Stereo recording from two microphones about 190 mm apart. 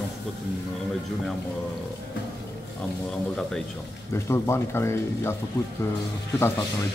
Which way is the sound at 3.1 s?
Centre (ahead or behind).